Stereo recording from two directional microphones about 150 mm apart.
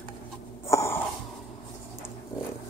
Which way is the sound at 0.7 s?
20° left (ahead or behind).